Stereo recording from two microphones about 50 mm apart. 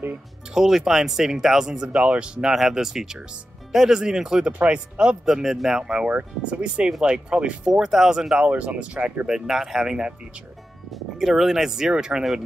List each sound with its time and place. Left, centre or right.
0.6 s speech: centre
1.9 s speech: right
2.5 s speech: centre
4.5 s speech: right
5.2 s speech: centre
7.7 s speech: centre
8.5 s speech: right
9.5 s speech: centre
10.9 s speech: centre